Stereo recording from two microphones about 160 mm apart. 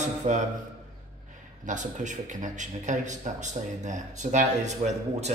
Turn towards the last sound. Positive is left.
turn(degrees=-45)  # may be behind; listen again after turning